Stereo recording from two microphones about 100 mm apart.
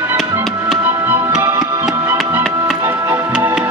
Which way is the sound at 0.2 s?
Centre (ahead or behind).